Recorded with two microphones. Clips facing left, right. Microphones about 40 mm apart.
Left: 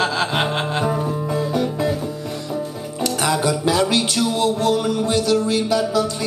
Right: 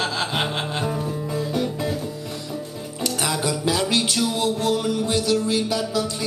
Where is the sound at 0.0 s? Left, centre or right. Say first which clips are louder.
Left 4 dB; centre.